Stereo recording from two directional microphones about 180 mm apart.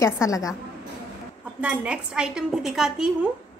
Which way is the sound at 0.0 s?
15° left (ahead or behind).